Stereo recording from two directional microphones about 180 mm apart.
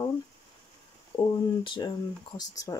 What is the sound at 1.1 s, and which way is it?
Speech, 25° left (ahead or behind).